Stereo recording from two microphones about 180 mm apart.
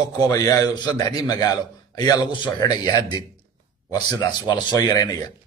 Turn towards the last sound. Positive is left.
turn(degrees=20)  # may be behind; listen again after turning